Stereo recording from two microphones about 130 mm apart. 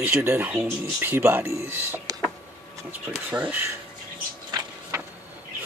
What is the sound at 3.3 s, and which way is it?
Speech, 10° right (ahead or behind).